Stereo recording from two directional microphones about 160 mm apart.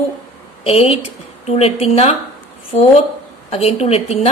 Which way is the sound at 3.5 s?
40° left (ahead or behind).